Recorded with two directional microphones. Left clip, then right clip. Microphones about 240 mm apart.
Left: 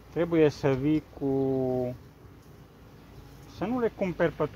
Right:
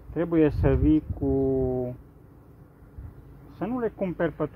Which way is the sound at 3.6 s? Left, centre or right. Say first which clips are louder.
Even; right.